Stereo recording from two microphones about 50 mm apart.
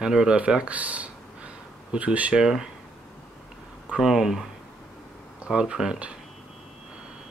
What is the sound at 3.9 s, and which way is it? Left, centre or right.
Speech, centre.